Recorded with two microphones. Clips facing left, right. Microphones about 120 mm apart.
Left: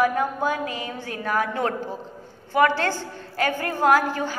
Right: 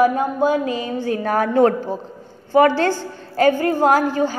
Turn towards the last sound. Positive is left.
turn(degrees=-30)  # may be behind; listen again after turning